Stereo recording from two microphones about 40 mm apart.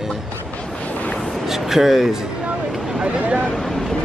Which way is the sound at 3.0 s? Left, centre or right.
Right.